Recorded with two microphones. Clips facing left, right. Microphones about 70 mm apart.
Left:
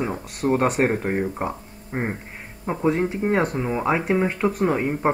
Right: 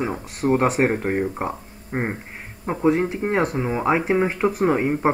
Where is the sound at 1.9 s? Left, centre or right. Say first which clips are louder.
Right 1 dB; centre.